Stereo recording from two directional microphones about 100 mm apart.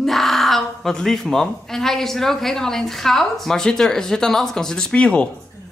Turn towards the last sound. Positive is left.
turn(degrees=10)  # may be behind; listen again after turning